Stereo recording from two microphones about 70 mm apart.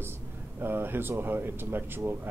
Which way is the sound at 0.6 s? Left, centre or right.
Right.